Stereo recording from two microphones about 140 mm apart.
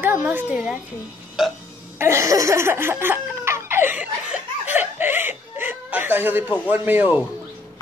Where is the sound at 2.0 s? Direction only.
20° right (ahead or behind).